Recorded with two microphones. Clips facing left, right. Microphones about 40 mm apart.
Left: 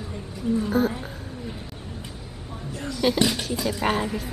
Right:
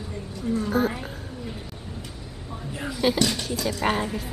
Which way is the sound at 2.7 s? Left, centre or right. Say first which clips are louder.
Even; centre.